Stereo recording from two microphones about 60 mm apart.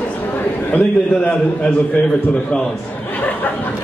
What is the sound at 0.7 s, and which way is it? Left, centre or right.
Speech, left.